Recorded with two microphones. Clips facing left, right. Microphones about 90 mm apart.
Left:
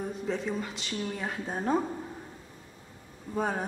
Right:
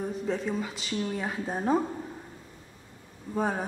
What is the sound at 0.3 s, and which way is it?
Speech, centre (ahead or behind).